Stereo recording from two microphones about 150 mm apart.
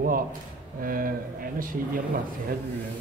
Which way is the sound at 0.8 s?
70° right (ahead or behind).